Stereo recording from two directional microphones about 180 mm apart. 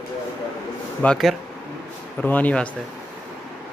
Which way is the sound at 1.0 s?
Centre (ahead or behind).